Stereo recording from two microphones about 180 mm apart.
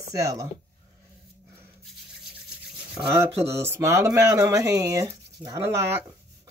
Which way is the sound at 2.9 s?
15° right (ahead or behind).